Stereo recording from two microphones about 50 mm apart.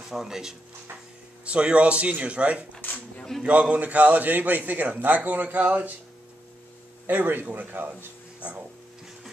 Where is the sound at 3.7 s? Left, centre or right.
Right.